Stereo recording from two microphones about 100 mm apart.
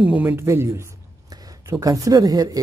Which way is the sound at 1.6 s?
35° right (ahead or behind).